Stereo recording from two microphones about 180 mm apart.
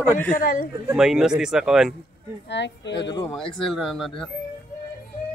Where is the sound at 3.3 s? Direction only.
Centre (ahead or behind).